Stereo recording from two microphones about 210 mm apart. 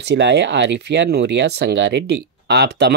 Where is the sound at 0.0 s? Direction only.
55° right (ahead or behind).